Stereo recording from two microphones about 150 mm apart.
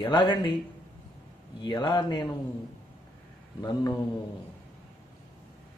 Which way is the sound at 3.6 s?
25° left (ahead or behind).